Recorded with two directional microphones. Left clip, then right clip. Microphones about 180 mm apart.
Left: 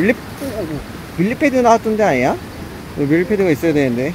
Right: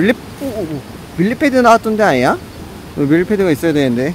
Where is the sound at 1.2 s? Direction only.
25° right (ahead or behind).